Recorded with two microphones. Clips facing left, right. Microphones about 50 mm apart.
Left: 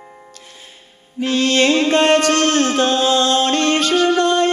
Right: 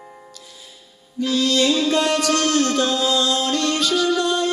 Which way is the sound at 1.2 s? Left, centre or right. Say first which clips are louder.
Left 3 dB; left.